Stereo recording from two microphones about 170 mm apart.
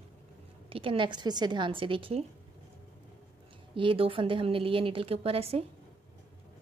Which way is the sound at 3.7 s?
30° right (ahead or behind).